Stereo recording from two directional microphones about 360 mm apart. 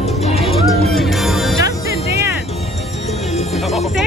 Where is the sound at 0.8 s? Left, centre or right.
Centre.